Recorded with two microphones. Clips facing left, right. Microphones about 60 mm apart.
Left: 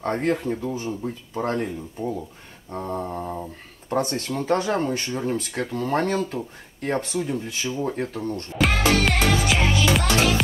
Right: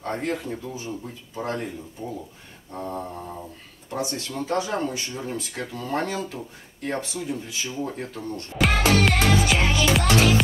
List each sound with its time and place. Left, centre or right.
0.0 s speech: left
3.9 s speech: left
8.5 s music: centre